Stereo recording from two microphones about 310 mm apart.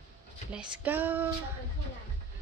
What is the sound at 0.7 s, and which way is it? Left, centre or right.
Speech, centre.